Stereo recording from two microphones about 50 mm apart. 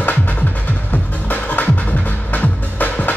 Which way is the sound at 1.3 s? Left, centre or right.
Left.